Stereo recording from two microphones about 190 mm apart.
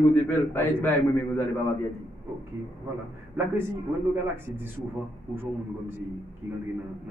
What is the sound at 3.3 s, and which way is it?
Speech, 10° right (ahead or behind).